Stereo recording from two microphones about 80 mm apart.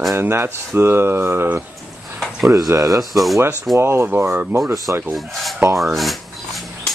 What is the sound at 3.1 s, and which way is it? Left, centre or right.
Filing, centre.